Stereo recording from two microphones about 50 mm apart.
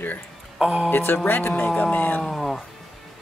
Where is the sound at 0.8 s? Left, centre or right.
Left.